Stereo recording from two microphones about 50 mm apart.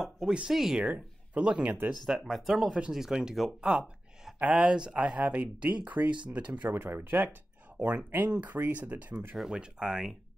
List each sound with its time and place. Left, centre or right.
0.0 s speech: centre
0.8 s speech: right
2.0 s speech: centre
4.4 s speech: right
6.7 s speech: right
7.7 s a sound: right
8.1 s speech: right
9.1 s speech: right
9.5 s speech: centre